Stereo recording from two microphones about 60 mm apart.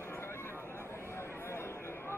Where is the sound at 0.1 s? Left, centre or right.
Left.